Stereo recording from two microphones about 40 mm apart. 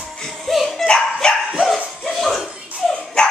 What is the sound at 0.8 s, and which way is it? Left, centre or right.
Dog, left.